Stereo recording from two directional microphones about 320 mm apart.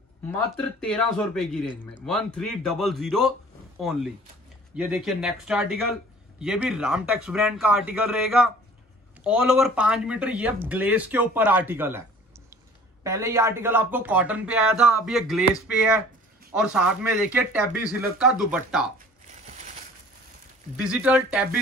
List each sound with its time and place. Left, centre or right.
0.3 s a man's voice: centre
4.7 s a man's voice: centre
13.0 s a man's voice: centre
19.4 s crushing: right
20.7 s a man's voice: centre